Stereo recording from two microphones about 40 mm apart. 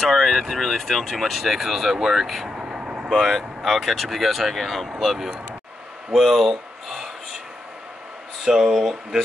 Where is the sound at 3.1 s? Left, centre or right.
Centre.